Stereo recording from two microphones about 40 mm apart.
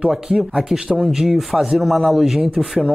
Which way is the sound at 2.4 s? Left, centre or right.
Centre.